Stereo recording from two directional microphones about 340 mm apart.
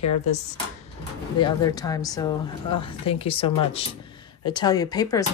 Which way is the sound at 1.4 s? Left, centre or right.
Centre.